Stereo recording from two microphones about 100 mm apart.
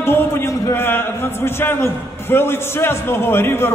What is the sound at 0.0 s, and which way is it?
A man's voice, 25° left (ahead or behind).